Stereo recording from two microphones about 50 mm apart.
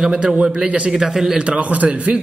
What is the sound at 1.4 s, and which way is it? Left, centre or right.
Speech, right.